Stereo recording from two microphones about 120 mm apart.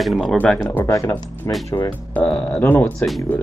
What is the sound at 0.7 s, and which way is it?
Speech, 25° left (ahead or behind).